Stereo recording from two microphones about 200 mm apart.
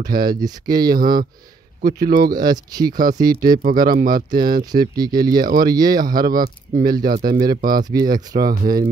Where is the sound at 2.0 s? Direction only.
45° right (ahead or behind).